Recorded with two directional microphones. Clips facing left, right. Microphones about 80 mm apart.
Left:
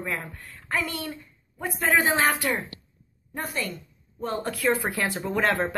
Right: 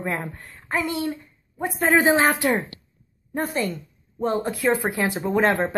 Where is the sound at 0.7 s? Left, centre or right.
Right.